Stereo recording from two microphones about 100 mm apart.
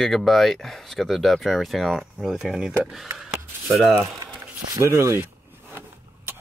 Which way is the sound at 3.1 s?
Centre (ahead or behind).